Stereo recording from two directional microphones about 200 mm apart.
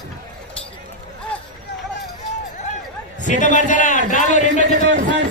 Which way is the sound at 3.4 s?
40° left (ahead or behind).